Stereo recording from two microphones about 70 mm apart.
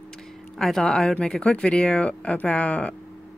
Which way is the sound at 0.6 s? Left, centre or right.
Centre.